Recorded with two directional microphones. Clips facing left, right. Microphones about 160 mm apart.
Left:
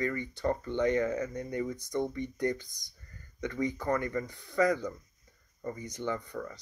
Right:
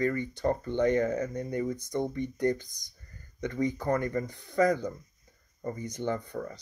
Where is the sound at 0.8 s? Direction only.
45° right (ahead or behind).